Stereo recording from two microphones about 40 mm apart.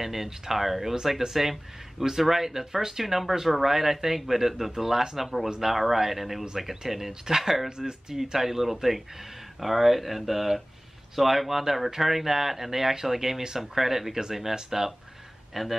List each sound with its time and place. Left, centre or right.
0.0 s speech: centre
7.7 s speech: centre
8.2 s speech: centre